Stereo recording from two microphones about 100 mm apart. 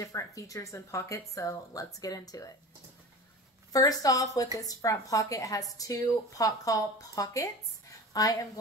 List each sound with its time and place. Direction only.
0.0 s speech: 35° left (ahead or behind)
3.7 s a woman's voice: 35° left (ahead or behind)